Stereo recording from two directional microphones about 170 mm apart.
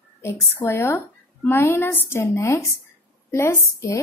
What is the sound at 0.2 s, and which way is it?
Speech, 15° left (ahead or behind).